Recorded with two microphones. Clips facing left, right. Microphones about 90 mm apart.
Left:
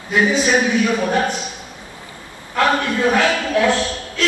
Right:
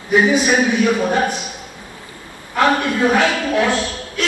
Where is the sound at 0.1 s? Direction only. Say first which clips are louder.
Right 2 dB; 20° right (ahead or behind).